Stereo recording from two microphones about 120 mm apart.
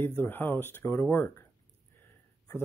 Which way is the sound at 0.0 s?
15° left (ahead or behind).